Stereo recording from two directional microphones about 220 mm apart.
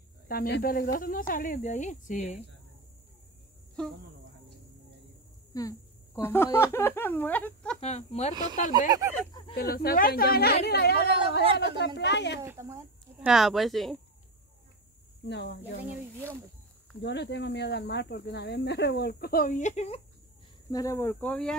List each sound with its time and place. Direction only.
0.3 s speech: 45° left (ahead or behind)
5.5 s speech: 15° left (ahead or behind)
7.8 s speech: 30° left (ahead or behind)
8.7 s speech: 15° right (ahead or behind)
9.6 s speech: 45° left (ahead or behind)
12.4 s speech: 10° right (ahead or behind)
13.3 s speech: centre (ahead or behind)
15.2 s speech: 50° left (ahead or behind)
17.0 s speech: 50° left (ahead or behind); by 20.0 s 30° left (ahead or behind)
20.7 s speech: 15° left (ahead or behind)